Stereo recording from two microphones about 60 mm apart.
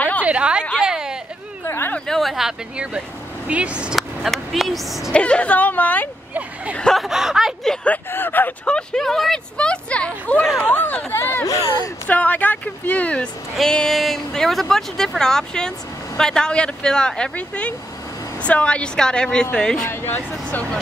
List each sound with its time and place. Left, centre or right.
0.2 s a sound: centre
1.7 s a sound: left
2.0 s a sound: centre
3.4 s speech: right
4.3 s a woman's voice: centre
5.1 s a woman's voice: centre
7.1 s speech: centre
8.1 s speech: left
8.6 s speech: centre; by 11.4 s left
11.4 s speech: left
12.1 s a woman's voice: left
13.6 s speech: centre
19.9 s speech: left